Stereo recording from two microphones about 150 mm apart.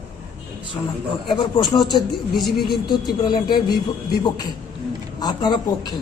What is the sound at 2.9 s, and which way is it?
A man's voice, 30° left (ahead or behind).